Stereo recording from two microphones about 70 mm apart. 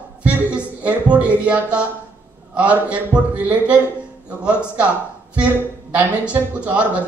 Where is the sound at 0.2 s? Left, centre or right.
Centre.